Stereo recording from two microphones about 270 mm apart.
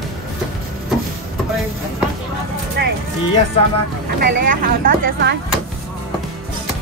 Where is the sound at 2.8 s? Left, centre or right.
Right.